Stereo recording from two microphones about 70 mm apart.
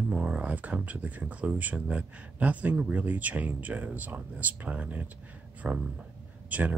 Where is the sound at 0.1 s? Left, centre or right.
Centre.